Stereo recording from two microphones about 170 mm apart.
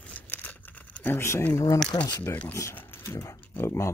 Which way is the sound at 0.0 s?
10° left (ahead or behind).